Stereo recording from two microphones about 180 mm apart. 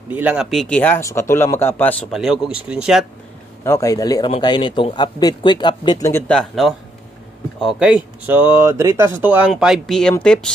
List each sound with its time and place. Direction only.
0.1 s speech: 5° right (ahead or behind)
3.6 s a man's voice: 15° left (ahead or behind)
6.1 s speech: 5° left (ahead or behind)